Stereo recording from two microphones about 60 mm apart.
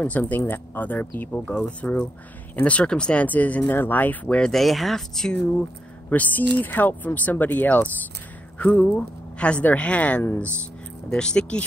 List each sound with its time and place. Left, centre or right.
0.2 s speech: left
4.4 s speech: centre
6.0 s speech: left; by 11.6 s centre